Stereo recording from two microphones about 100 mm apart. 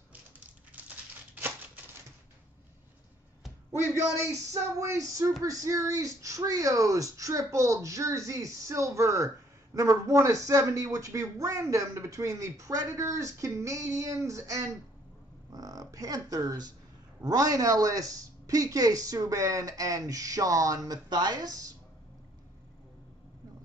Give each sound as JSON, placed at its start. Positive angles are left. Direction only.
{"t": 0.7, "sound": "crumpling", "side_deg": -15}
{"t": 3.7, "sound": "speech", "side_deg": -25}